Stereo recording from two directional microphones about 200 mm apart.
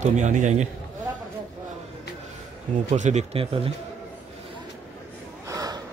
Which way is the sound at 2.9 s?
35° right (ahead or behind).